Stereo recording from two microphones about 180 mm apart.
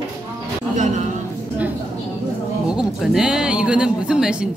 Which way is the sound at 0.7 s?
40° right (ahead or behind).